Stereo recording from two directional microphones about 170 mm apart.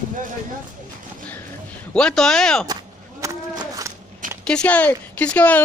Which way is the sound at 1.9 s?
5° left (ahead or behind).